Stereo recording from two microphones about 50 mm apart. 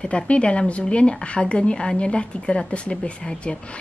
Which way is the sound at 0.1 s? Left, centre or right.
Left.